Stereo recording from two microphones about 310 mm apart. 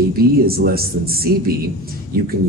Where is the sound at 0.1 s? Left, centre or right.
Right.